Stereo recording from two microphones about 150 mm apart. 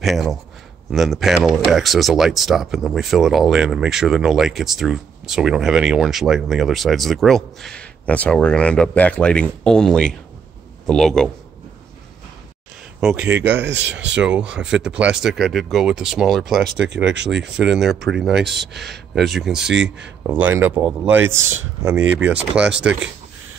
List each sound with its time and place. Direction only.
0.0 s speech: centre (ahead or behind)
13.0 s speech: 5° right (ahead or behind)
18.7 s speech: 90° right
19.1 s speech: centre (ahead or behind)